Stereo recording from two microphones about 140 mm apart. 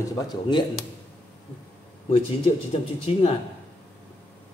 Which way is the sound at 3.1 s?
45° left (ahead or behind).